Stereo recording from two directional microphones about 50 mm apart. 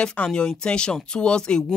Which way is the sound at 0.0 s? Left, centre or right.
Left.